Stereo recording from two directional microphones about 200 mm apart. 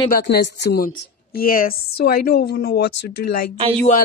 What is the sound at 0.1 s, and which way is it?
Speech, 50° left (ahead or behind).